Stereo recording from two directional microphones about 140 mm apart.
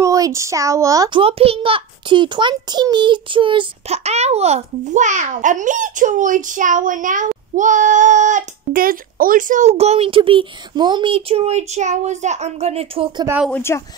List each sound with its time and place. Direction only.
0.0 s speech: 25° right (ahead or behind)
1.2 s a child's voice: 40° right (ahead or behind)
13.5 s speech: 15° left (ahead or behind)